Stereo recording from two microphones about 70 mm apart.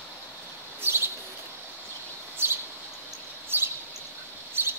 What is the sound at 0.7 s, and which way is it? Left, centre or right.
Bird, right.